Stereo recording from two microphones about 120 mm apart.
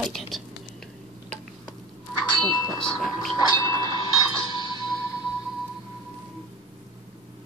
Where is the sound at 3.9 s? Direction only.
35° left (ahead or behind).